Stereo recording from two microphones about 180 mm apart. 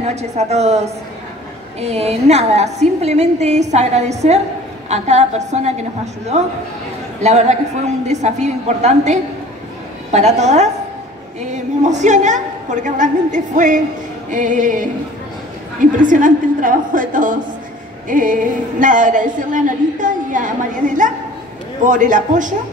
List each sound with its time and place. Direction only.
0.0 s a woman's voice: 35° right (ahead or behind)